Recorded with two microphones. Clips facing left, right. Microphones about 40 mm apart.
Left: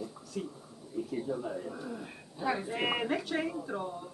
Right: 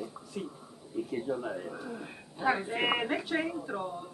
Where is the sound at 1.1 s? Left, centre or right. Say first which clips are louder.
Right 2 dB; right.